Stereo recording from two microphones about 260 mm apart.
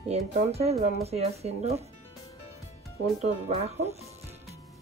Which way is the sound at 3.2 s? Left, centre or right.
Right.